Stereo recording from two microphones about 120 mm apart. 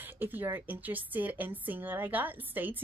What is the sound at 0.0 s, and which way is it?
A woman's voice, 15° right (ahead or behind).